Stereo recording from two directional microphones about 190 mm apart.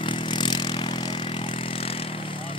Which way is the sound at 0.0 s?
25° left (ahead or behind).